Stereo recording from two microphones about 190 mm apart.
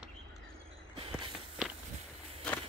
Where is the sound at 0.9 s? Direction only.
30° right (ahead or behind).